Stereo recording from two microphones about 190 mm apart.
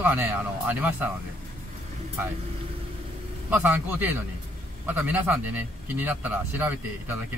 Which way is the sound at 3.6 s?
10° right (ahead or behind).